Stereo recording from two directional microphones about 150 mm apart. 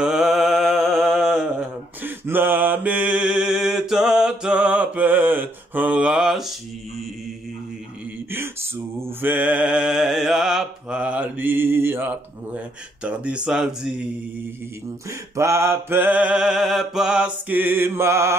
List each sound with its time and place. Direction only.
0.0 s mantra: 5° right (ahead or behind)
2.0 s mantra: 15° right (ahead or behind)
8.3 s a sound: 15° right (ahead or behind)
13.0 s mantra: 5° right (ahead or behind)
15.0 s mantra: 20° right (ahead or behind)